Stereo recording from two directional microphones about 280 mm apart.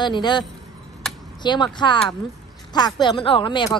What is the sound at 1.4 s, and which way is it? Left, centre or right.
A woman's voice, centre.